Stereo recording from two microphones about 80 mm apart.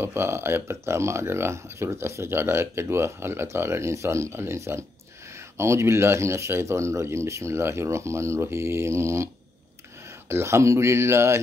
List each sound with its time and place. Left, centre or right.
0.0 s speech: right